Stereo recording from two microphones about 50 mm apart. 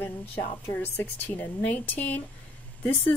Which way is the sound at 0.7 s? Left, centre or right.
Left.